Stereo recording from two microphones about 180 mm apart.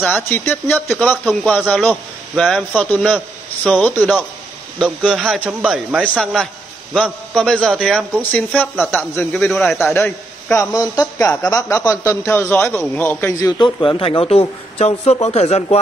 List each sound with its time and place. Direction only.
0.0 s a man's voice: 10° left (ahead or behind)
4.7 s a man's voice: 5° right (ahead or behind)
9.9 s a man's voice: 15° left (ahead or behind); by 15.8 s 35° left (ahead or behind)